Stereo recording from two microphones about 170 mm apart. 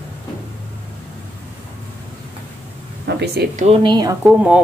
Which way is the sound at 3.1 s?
80° right.